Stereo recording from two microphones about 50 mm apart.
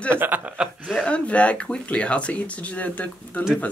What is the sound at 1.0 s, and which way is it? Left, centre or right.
Speech, left.